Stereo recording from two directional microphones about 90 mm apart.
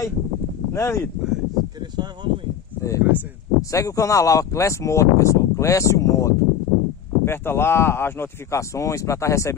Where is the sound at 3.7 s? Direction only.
40° left (ahead or behind).